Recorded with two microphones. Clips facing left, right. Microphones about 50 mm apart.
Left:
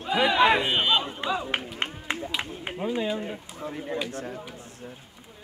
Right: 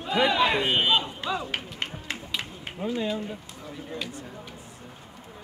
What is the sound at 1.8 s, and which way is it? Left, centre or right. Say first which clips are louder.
Run: left 2 dB; left.